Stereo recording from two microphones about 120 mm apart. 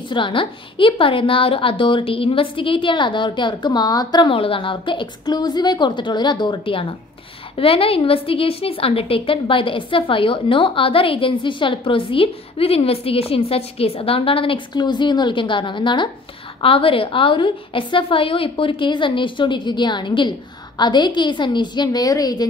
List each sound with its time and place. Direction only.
0.1 s a woman's voice: 45° left (ahead or behind)